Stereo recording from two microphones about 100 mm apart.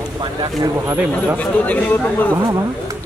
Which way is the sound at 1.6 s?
15° left (ahead or behind).